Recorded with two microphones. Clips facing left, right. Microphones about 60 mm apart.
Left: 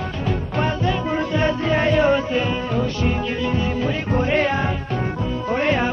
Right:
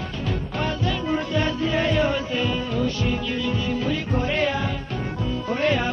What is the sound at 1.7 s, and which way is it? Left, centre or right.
Music, left.